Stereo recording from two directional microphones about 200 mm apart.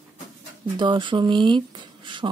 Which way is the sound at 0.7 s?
25° right (ahead or behind).